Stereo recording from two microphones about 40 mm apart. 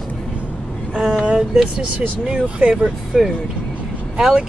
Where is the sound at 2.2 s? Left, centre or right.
Right.